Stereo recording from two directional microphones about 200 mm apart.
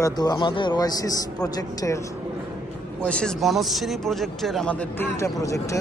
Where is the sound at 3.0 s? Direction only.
Centre (ahead or behind).